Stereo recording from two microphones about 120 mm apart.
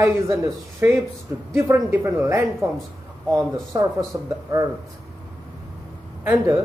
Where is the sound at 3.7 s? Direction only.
25° right (ahead or behind).